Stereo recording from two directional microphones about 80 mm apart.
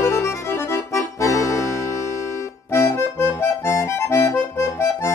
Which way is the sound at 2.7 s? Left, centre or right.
Left.